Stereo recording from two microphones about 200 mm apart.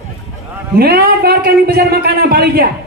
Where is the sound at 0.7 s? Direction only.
50° right (ahead or behind).